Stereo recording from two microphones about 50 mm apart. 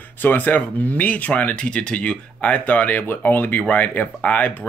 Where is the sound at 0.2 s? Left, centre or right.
Left.